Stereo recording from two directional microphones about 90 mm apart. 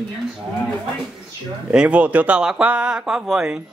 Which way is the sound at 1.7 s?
10° right (ahead or behind).